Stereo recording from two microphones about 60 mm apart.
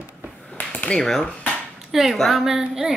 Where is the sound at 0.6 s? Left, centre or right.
Left.